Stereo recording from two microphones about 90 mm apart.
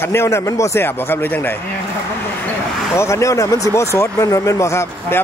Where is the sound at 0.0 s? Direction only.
30° left (ahead or behind).